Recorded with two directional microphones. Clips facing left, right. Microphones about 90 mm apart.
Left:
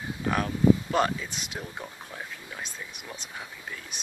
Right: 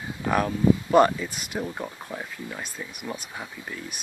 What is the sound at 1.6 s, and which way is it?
Speech, 15° right (ahead or behind).